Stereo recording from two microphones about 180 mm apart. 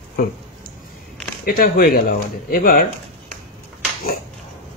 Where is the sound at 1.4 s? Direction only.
55° left (ahead or behind).